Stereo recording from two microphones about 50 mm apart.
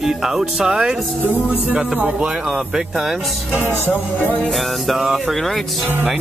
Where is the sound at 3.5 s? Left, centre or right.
Right.